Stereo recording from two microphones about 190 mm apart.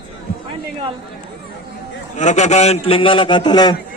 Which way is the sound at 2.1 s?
40° left (ahead or behind).